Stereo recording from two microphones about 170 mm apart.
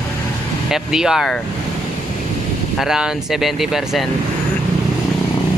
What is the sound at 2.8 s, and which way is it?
Speech, 5° right (ahead or behind).